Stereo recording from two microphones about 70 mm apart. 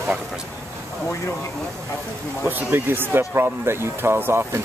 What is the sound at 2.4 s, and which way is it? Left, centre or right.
Speech, right.